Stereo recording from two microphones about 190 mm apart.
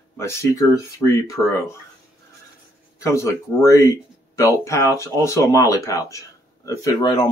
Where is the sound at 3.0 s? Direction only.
15° left (ahead or behind).